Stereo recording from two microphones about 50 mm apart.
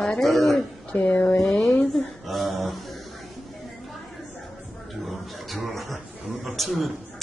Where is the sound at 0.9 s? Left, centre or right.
Left.